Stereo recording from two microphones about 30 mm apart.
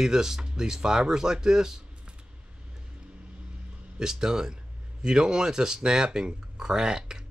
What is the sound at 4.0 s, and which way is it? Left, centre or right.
Speech, right.